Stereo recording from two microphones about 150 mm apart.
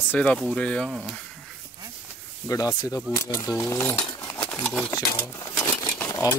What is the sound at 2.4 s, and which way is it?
Speech, 25° left (ahead or behind).